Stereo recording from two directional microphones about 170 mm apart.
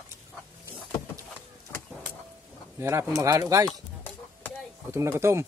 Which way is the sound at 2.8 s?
15° right (ahead or behind).